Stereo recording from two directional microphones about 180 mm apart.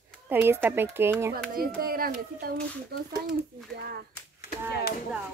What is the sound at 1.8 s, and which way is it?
A child's voice, 55° right (ahead or behind).